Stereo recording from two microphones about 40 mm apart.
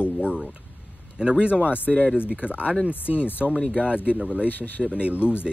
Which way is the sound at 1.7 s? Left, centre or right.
Left.